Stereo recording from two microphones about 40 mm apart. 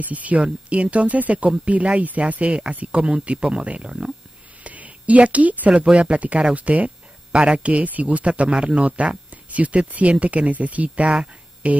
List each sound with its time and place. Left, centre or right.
0.1 s speech: right
3.0 s speech: right
7.3 s speech: right
8.3 s speech: right